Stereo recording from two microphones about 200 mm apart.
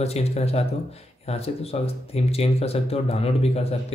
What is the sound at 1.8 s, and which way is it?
Speech, 30° left (ahead or behind).